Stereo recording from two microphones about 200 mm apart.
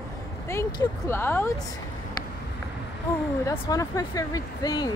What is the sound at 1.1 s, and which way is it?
Speech, 10° left (ahead or behind).